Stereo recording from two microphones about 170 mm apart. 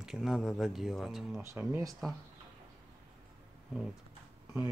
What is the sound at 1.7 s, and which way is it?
Speech, 20° right (ahead or behind).